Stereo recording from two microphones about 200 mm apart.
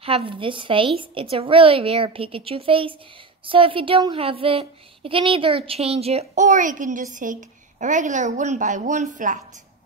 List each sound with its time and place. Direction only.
0.0 s a woman's voice: 25° right (ahead or behind)